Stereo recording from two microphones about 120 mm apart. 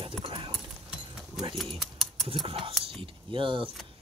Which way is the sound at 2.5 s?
50° right (ahead or behind).